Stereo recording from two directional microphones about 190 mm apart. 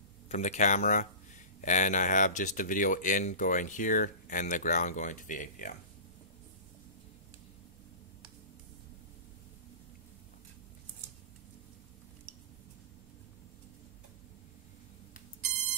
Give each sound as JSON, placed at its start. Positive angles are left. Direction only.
{"t": 0.3, "sound": "speech", "side_deg": 40}